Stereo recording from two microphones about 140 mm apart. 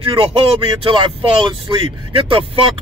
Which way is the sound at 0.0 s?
40° right (ahead or behind).